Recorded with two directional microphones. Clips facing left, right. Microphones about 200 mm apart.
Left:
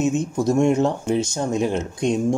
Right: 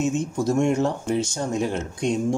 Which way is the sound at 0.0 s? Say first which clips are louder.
Left 3 dB; 20° left (ahead or behind).